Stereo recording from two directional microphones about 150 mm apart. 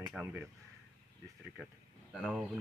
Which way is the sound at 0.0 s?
10° right (ahead or behind).